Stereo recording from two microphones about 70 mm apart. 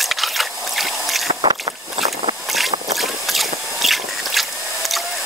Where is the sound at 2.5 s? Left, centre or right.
Centre.